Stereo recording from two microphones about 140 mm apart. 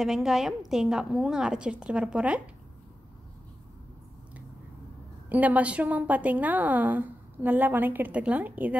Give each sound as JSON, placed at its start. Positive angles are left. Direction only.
{"t": 0.0, "sound": "a woman's voice", "side_deg": -5}
{"t": 5.3, "sound": "a woman's voice", "side_deg": -10}